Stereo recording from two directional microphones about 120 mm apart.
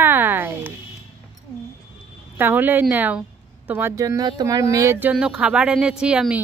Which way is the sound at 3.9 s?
25° right (ahead or behind).